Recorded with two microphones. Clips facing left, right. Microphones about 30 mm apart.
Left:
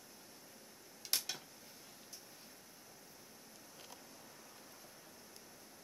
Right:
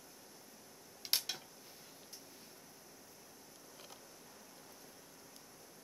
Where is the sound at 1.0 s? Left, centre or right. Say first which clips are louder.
Right 3 dB; right.